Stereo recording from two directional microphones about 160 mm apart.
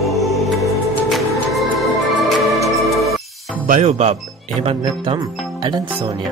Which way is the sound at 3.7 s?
45° right (ahead or behind).